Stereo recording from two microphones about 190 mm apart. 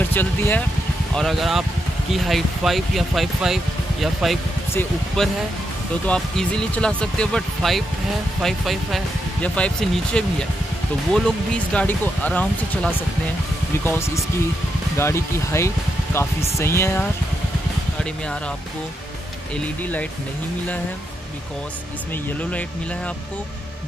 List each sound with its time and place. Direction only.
0.1 s speech: 10° left (ahead or behind)
11.2 s speech: 5° left (ahead or behind)
19.5 s speech: 10° left (ahead or behind)
22.1 s speech: 10° left (ahead or behind)